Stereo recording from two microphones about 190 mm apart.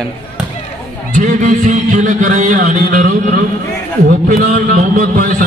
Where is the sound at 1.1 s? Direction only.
45° right (ahead or behind).